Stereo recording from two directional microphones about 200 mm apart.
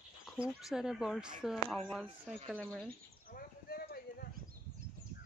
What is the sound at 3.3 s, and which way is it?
Clip-clop, 45° left (ahead or behind).